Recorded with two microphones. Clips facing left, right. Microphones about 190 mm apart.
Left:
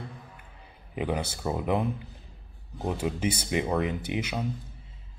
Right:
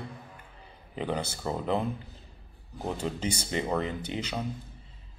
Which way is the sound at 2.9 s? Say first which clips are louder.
Left 3 dB; 10° left (ahead or behind).